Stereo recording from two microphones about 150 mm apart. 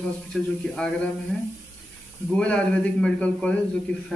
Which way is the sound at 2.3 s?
5° left (ahead or behind).